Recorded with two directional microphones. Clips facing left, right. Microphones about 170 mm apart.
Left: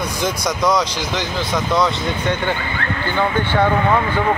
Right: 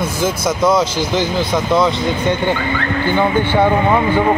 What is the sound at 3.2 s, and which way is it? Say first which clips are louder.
Speech: right 3 dB; 15° right (ahead or behind).